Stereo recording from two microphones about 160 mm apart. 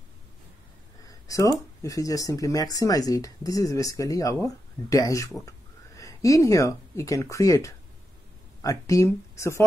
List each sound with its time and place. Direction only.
1.0 s speech: 20° left (ahead or behind)